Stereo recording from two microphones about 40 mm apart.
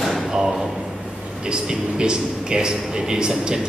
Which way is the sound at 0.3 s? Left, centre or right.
Centre.